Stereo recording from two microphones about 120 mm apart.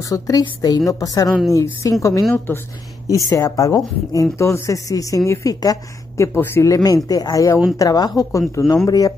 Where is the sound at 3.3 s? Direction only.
25° left (ahead or behind).